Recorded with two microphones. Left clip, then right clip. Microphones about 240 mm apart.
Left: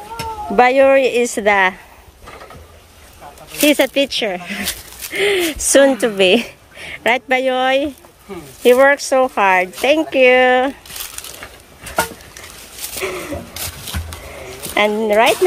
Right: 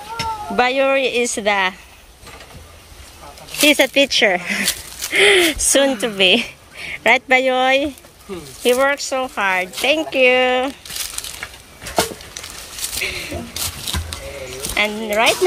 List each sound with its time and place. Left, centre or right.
0.6 s speech: centre
3.6 s speech: centre
5.7 s a woman's voice: centre
13.0 s a sound: centre
14.7 s speech: centre